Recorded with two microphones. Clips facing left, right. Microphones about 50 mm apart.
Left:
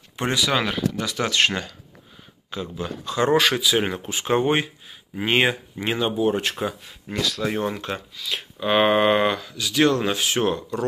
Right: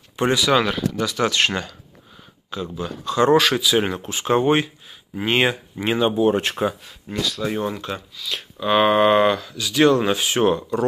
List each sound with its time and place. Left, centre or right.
0.3 s speech: centre
2.5 s speech: centre
3.2 s speech: centre
5.9 s speech: right
7.2 s speech: left
7.4 s speech: left; by 9.8 s centre
9.8 s speech: centre